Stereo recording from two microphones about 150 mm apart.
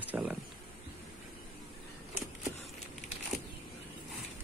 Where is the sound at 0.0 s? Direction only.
10° right (ahead or behind).